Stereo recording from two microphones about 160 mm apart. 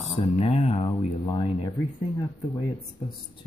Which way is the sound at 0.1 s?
35° left (ahead or behind).